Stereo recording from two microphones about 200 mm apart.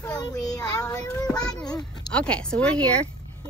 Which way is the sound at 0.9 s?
20° left (ahead or behind).